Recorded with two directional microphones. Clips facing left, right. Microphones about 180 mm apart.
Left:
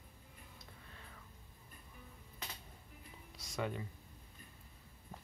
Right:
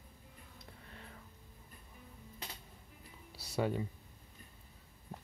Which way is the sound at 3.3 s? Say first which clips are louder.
Right 5 dB; 35° right (ahead or behind).